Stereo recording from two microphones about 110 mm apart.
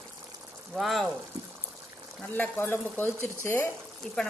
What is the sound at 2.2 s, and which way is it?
Speech, 15° left (ahead or behind).